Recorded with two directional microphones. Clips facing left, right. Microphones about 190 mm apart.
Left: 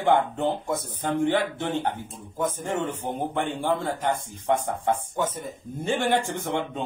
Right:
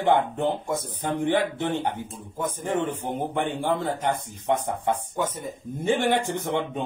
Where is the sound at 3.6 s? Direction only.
15° right (ahead or behind).